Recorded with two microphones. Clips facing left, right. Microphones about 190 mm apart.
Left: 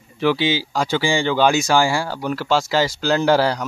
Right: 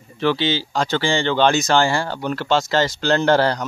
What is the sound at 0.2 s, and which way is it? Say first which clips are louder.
Speech: left 1 dB; 10° left (ahead or behind).